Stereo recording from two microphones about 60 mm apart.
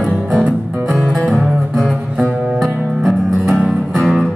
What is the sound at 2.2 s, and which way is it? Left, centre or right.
Music, right.